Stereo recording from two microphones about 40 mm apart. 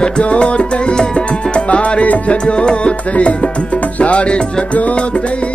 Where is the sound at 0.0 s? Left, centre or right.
Left.